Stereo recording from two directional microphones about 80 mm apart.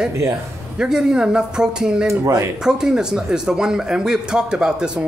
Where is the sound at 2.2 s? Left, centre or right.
Right.